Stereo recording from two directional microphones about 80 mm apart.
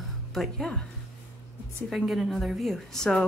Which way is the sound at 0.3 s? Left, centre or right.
Centre.